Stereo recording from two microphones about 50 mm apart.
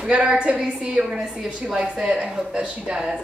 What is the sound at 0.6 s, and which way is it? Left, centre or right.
A woman's voice, right.